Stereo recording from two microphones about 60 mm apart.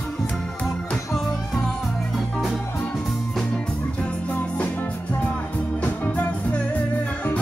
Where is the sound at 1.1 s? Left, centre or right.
Centre.